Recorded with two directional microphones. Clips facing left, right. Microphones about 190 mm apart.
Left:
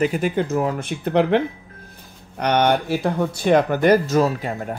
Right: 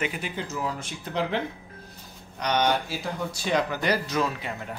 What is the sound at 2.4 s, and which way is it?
Speech, 60° left (ahead or behind).